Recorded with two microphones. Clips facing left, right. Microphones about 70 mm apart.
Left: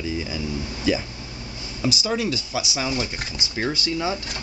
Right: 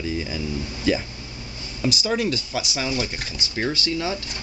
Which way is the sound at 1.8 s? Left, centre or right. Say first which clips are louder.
Right 1 dB; centre.